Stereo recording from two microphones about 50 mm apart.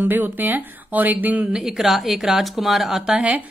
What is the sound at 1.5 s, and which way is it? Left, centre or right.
Speech, centre.